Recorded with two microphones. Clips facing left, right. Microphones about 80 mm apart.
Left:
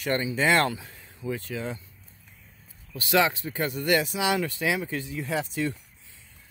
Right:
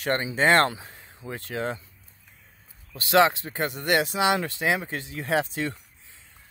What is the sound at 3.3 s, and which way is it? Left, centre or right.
Speech, right.